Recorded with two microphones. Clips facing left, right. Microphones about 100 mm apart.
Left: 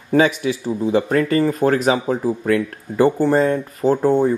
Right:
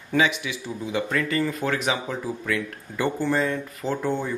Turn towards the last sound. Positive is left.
turn(degrees=35)  # may be behind; listen again after turning